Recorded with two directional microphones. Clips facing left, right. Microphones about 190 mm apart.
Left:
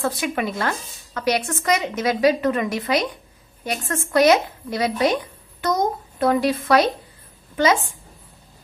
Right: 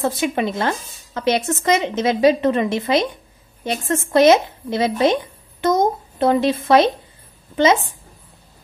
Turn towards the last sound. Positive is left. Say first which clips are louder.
# right 3 dB
turn(degrees=-25)  # may be behind; listen again after turning